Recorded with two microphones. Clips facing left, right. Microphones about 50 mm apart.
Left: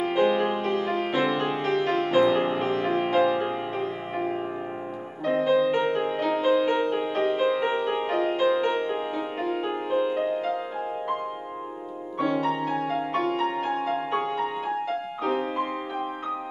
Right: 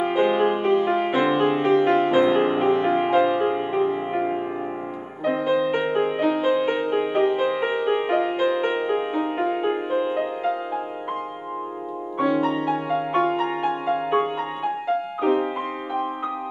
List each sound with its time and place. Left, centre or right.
0.0 s music: centre
12.2 s music: centre